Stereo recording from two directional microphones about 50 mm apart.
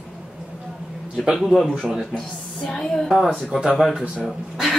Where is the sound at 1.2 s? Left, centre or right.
Centre.